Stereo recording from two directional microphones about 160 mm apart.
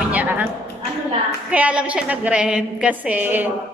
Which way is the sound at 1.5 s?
5° right (ahead or behind).